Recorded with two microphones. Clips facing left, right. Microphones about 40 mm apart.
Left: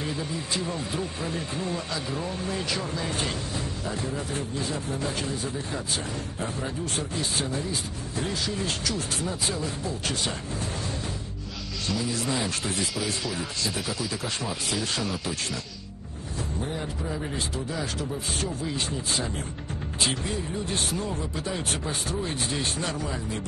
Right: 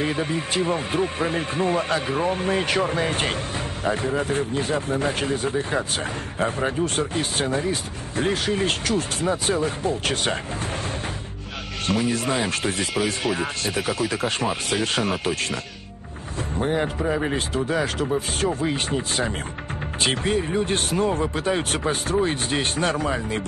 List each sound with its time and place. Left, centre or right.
0.0 s speech: right
11.9 s speech: right
16.5 s speech: right